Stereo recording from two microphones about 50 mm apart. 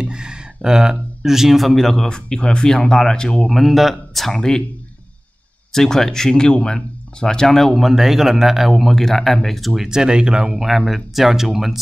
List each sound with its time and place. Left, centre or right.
0.0 s speech: centre
3.4 s speech: centre
5.7 s speech: centre
7.9 s speech: centre
9.8 s speech: centre
10.5 s speech: centre